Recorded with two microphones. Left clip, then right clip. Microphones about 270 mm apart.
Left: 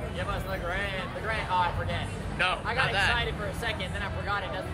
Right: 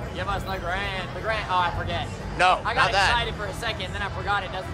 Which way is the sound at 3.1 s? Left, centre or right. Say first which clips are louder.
Right 4 dB; right.